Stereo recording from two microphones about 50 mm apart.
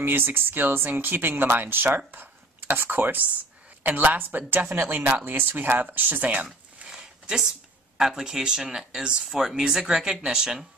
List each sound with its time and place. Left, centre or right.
0.0 s speech: right
4.6 s speech: right
6.2 s a sound: right
7.2 s speech: centre